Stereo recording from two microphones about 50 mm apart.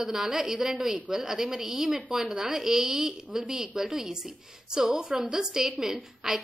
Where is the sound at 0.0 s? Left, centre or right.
Centre.